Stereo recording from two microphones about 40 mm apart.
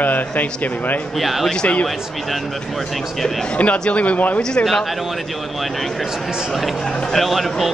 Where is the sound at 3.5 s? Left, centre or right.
Left.